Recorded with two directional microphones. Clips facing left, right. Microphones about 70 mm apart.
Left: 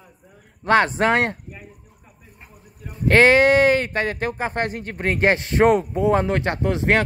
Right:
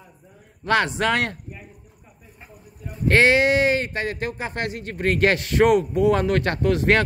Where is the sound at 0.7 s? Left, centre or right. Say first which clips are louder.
Left 3 dB; left.